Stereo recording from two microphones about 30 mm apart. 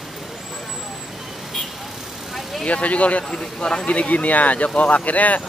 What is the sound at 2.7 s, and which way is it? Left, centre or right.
Speech, left.